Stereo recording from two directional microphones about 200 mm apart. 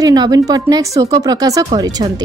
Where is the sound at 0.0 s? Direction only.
20° right (ahead or behind).